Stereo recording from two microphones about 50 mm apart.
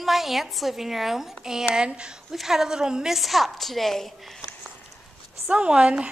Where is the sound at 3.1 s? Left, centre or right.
Centre.